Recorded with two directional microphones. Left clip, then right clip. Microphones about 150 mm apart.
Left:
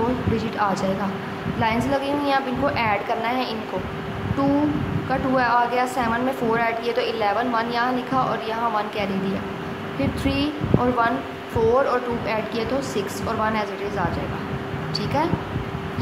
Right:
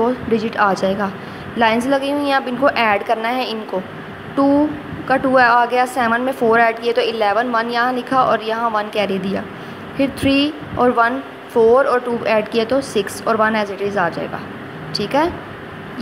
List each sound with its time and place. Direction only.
0.4 s a woman's voice: 45° right (ahead or behind)
1.9 s a woman's voice: 45° right (ahead or behind)